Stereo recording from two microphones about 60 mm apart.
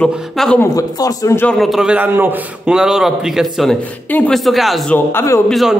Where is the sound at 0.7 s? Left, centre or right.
Left.